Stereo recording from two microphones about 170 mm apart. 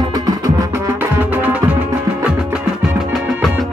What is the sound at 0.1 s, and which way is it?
Music, 20° right (ahead or behind).